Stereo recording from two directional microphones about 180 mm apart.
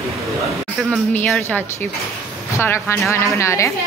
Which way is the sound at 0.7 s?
5° right (ahead or behind).